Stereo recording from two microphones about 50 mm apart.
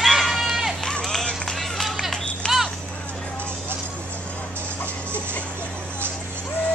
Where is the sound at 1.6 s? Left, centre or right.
Centre.